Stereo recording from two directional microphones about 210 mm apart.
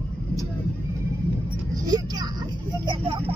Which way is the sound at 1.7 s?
20° right (ahead or behind).